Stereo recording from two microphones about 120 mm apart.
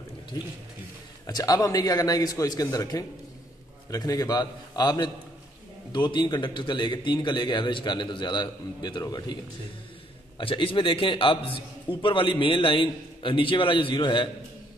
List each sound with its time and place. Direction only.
1.2 s a man's voice: 30° left (ahead or behind)
10.3 s a man's voice: 45° left (ahead or behind)